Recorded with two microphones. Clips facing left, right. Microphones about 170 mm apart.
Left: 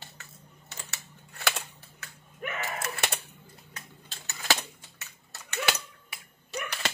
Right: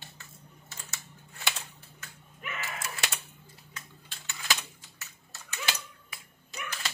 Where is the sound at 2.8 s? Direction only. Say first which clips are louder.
Left 4 dB; 60° left (ahead or behind).